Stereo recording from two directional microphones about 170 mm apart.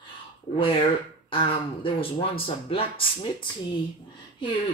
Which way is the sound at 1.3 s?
30° left (ahead or behind).